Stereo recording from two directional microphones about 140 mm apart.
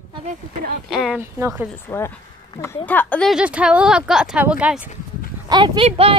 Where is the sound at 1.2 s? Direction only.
20° right (ahead or behind).